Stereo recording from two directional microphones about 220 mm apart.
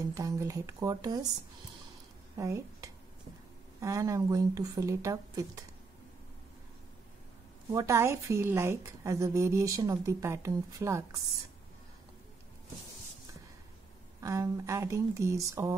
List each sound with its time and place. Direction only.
0.0 s a woman's voice: 15° right (ahead or behind)
2.3 s a woman's voice: 15° right (ahead or behind)
7.7 s a woman's voice: 15° right (ahead or behind)
14.2 s a woman's voice: 15° right (ahead or behind)